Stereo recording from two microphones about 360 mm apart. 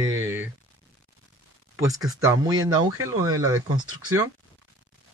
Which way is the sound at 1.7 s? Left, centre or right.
Centre.